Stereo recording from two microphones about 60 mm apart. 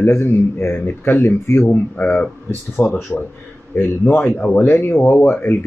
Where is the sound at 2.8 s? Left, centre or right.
Left.